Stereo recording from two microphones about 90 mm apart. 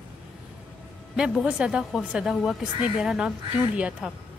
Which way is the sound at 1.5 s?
10° right (ahead or behind).